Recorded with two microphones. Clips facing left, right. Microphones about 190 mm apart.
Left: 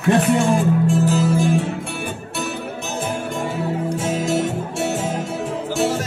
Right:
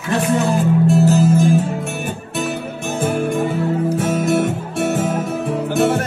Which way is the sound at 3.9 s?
55° right (ahead or behind).